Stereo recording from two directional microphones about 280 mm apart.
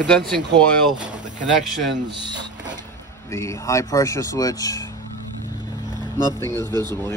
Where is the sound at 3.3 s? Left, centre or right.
Centre.